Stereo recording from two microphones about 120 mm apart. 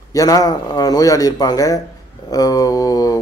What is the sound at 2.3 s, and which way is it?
Mantra, 30° left (ahead or behind).